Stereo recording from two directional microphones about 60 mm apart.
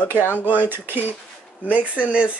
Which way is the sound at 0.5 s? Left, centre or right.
Right.